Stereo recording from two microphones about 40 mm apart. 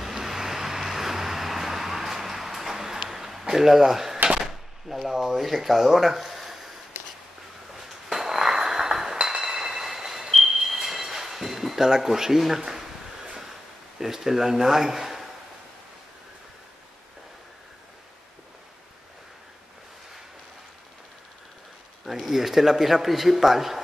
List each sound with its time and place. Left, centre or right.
0.0 s vehicle: centre
3.1 s chop: centre
4.4 s speech: centre
7.7 s chink: centre
11.9 s a man's voice: centre
13.9 s speech: centre
22.0 s a man's voice: centre